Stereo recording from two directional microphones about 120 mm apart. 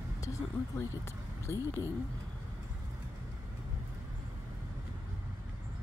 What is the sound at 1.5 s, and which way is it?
Speech, 20° left (ahead or behind).